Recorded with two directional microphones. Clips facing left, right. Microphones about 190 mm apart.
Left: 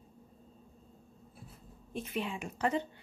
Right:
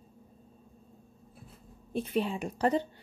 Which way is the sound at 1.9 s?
35° right (ahead or behind).